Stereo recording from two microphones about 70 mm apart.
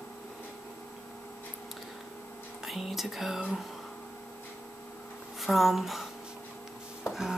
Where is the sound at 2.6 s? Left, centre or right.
Centre.